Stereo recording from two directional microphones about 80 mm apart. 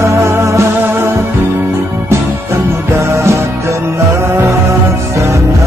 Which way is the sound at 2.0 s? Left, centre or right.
Right.